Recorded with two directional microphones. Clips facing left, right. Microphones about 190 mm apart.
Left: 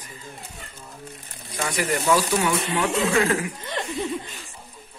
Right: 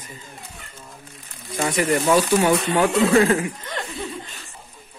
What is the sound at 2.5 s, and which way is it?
Speech, 35° right (ahead or behind).